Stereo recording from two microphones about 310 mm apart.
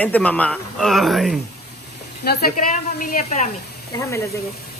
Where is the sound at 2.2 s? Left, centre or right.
Left.